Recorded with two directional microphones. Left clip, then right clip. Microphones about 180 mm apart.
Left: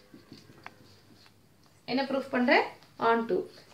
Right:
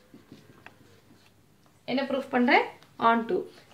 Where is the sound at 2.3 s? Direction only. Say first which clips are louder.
Right 3 dB; 55° right (ahead or behind).